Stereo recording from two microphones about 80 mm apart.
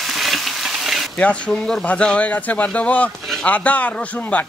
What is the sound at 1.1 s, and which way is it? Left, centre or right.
Speech, centre.